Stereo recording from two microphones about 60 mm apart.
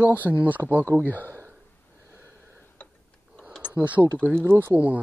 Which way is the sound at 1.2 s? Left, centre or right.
Right.